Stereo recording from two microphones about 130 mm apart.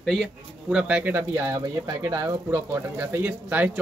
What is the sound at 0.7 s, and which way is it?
Speech, 10° right (ahead or behind).